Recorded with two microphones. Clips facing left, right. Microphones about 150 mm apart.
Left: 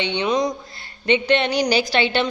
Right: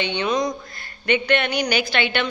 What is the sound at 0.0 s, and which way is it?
A woman's voice, 25° left (ahead or behind).